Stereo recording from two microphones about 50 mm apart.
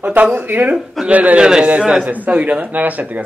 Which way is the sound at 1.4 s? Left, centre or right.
Centre.